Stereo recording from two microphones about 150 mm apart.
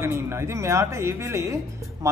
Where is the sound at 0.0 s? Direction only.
15° right (ahead or behind).